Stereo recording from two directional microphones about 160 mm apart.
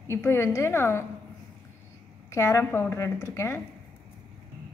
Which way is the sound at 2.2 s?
15° left (ahead or behind).